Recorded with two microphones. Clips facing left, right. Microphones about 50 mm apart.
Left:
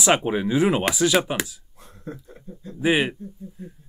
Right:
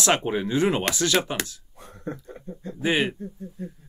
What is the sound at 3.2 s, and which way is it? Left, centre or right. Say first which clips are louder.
Speech: right 2 dB; right.